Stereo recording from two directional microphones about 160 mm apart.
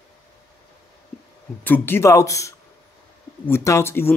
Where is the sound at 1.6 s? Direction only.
10° left (ahead or behind).